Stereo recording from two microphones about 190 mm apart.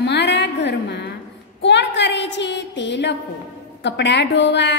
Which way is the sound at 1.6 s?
65° left (ahead or behind).